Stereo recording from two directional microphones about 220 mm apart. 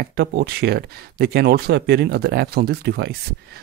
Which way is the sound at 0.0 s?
45° right (ahead or behind).